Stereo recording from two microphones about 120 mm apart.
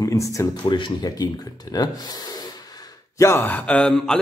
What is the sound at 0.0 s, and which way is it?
Speech, 25° left (ahead or behind).